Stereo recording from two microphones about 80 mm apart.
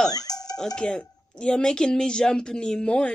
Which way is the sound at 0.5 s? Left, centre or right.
Centre.